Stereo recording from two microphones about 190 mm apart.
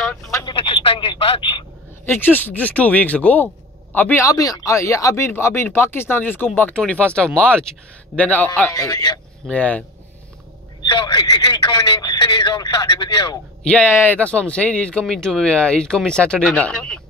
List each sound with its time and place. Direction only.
0.0 s telephone: centre (ahead or behind)
0.3 s telephone: 15° left (ahead or behind)
0.6 s telephone: 30° left (ahead or behind)
2.0 s speech: 10° left (ahead or behind)
8.7 s a man's voice: 20° left (ahead or behind)
9.5 s speech: 5° left (ahead or behind)
10.8 s a man's voice: 20° left (ahead or behind)
13.7 s speech: 10° left (ahead or behind)